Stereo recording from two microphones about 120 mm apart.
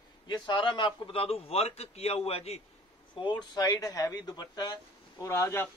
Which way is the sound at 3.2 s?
40° left (ahead or behind).